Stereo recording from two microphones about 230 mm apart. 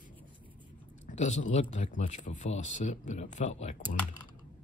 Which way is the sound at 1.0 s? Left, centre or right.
Left.